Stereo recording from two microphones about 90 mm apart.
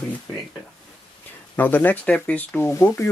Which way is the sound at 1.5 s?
20° left (ahead or behind).